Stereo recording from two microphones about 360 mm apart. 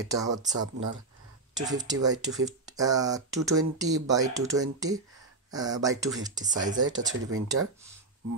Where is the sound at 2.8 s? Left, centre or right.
Centre.